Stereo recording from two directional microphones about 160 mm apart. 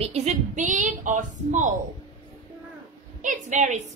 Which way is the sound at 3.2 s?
50° right (ahead or behind).